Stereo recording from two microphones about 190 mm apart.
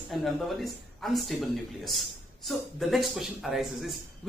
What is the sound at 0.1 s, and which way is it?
Speech, centre (ahead or behind).